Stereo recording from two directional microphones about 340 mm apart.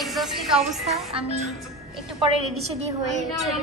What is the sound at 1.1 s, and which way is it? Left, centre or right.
Speech, centre.